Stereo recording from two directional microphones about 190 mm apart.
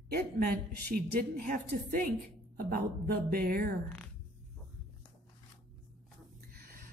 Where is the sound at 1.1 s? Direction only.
40° right (ahead or behind).